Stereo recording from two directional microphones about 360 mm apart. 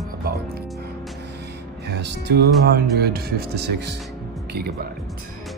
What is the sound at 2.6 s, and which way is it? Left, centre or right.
Speech, right.